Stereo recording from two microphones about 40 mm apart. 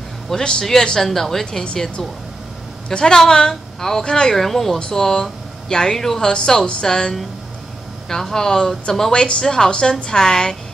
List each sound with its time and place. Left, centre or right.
0.4 s a woman's voice: centre
1.0 s a woman's voice: centre